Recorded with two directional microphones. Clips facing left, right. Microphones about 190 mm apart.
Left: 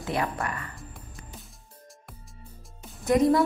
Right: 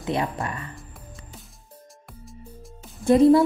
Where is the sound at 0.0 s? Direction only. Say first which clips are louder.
Right 3 dB; 20° right (ahead or behind).